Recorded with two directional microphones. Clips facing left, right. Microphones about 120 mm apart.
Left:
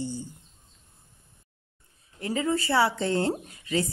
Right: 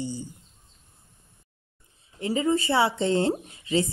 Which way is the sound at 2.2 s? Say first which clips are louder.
Right 3 dB; 20° right (ahead or behind).